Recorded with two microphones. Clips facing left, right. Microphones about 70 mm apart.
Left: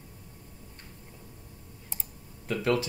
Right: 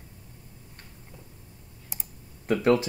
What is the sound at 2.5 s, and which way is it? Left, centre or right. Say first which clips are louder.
Speech: right 5 dB; right.